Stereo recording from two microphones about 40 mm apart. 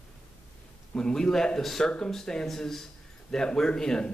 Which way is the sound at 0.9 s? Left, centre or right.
Centre.